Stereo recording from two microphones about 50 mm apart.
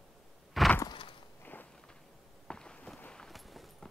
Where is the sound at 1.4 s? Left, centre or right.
Left.